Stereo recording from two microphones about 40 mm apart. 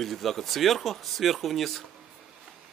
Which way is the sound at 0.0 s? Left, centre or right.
Centre.